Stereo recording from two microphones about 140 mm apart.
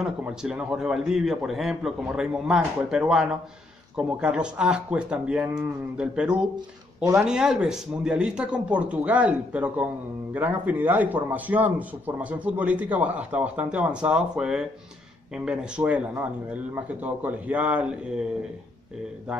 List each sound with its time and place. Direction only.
0.2 s a man's voice: 5° right (ahead or behind)